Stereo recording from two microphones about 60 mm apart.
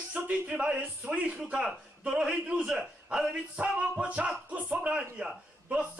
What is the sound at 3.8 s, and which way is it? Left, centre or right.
A man's voice, right.